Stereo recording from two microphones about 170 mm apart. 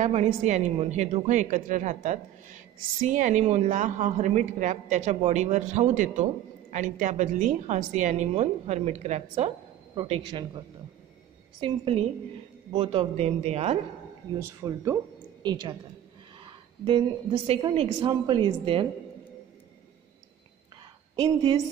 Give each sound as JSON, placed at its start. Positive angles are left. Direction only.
{"t": 0.0, "sound": "a woman's voice", "side_deg": -40}
{"t": 9.9, "sound": "a woman's voice", "side_deg": -25}
{"t": 11.6, "sound": "speech", "side_deg": -30}
{"t": 14.6, "sound": "speech", "side_deg": -15}
{"t": 15.4, "sound": "a woman's voice", "side_deg": -25}
{"t": 16.4, "sound": "a sound", "side_deg": -30}
{"t": 17.5, "sound": "a woman's voice", "side_deg": -30}
{"t": 21.2, "sound": "a woman's voice", "side_deg": -25}